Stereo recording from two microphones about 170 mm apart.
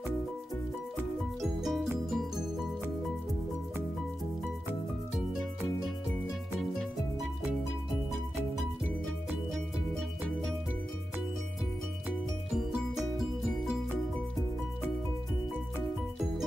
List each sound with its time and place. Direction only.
1.4 s music: centre (ahead or behind)
9.5 s music: centre (ahead or behind)